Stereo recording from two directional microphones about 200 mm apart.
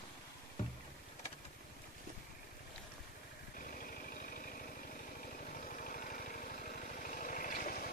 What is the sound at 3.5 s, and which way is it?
Vehicle, 45° left (ahead or behind).